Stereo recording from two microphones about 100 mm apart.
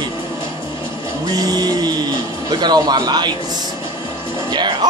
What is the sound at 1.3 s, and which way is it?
Speech, 40° right (ahead or behind).